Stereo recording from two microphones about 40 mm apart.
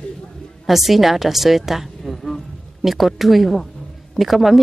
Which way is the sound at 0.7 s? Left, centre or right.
Centre.